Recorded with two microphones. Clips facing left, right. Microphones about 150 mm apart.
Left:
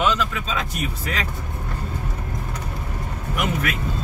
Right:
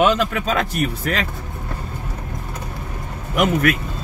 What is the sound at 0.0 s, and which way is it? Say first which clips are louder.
Speech: right 5 dB; 55° right (ahead or behind).